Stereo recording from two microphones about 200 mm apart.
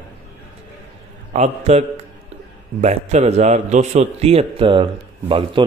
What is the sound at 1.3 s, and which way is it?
A man's voice, 35° right (ahead or behind).